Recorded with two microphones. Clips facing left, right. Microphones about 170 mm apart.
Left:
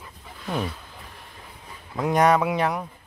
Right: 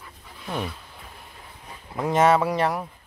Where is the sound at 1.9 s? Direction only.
Centre (ahead or behind).